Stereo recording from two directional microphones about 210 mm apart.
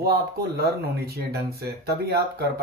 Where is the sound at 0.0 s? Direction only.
45° right (ahead or behind).